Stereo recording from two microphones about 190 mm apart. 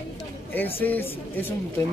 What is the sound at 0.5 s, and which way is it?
Speech, 10° left (ahead or behind).